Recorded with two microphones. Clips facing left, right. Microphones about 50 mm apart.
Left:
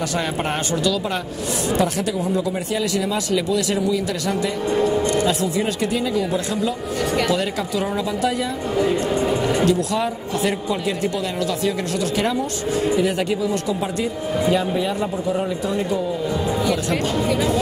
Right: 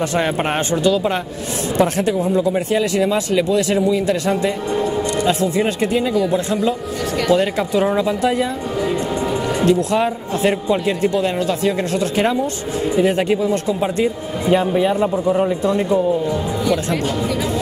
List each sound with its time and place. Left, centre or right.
1.8 s speech: right
7.2 s speech: right
8.7 s speech: centre
9.7 s speech: right
12.9 s speech: right